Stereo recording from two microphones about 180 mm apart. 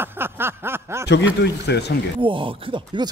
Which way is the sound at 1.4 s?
65° left (ahead or behind).